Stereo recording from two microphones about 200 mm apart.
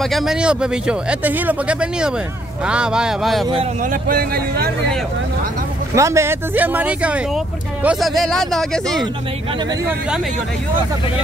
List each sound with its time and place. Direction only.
0.0 s speech: centre (ahead or behind)
3.8 s speech: 45° right (ahead or behind)
5.9 s speech: 15° right (ahead or behind); by 9.0 s centre (ahead or behind)